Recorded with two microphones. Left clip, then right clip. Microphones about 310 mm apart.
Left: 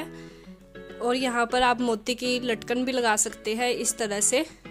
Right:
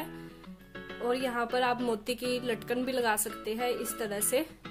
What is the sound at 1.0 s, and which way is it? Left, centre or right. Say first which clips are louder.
Speech: left 6 dB; left.